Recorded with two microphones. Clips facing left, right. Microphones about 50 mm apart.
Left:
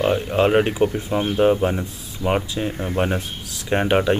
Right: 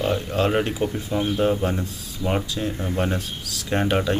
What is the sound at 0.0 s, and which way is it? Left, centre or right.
Speech, left.